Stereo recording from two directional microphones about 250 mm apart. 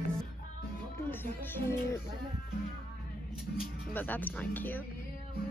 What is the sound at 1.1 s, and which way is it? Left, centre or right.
Speech, centre.